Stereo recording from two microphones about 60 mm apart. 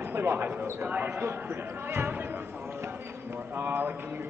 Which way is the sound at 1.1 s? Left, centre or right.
Right.